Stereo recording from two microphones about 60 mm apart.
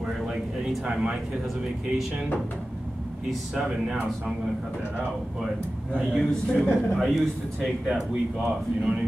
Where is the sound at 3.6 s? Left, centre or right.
Centre.